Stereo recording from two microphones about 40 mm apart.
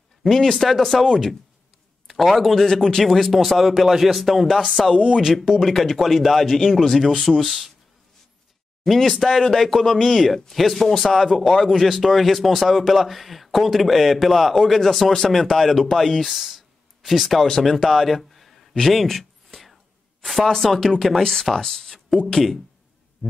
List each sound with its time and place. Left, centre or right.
0.2 s a man's voice: centre
4.9 s speech: right
5.2 s a man's voice: centre
8.8 s a man's voice: centre
17.5 s a sound: centre
20.4 s a man's voice: centre